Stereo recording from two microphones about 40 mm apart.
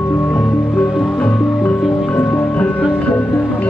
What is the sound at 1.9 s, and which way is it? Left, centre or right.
Music, left.